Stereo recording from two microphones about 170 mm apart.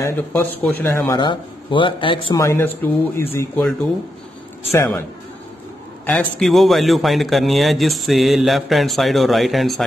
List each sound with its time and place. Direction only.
0.0 s speech: 10° left (ahead or behind); by 2.3 s 30° left (ahead or behind)
2.3 s speech: 15° left (ahead or behind)
4.6 s speech: 15° left (ahead or behind)
6.0 s a man's voice: 5° left (ahead or behind)